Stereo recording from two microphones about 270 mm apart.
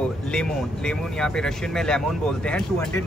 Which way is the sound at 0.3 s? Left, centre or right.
Centre.